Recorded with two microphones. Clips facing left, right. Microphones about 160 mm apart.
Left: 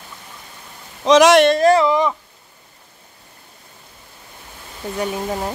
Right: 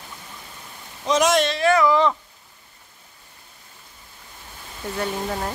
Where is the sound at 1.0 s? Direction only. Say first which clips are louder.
Left 8 dB; 80° left.